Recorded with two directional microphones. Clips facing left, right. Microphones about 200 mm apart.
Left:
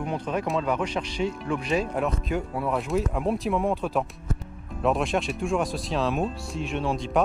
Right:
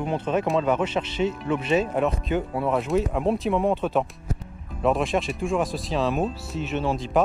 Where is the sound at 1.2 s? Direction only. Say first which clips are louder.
Right 3 dB; centre (ahead or behind).